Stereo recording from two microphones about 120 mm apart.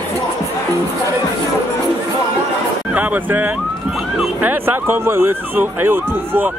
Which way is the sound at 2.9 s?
15° right (ahead or behind).